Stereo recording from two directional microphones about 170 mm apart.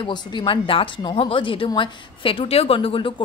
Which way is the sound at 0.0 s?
25° left (ahead or behind).